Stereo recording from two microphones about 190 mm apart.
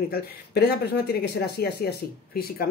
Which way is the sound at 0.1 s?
55° left (ahead or behind).